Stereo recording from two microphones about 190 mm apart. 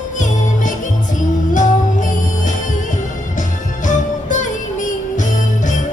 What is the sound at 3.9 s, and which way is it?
Music, 40° left (ahead or behind).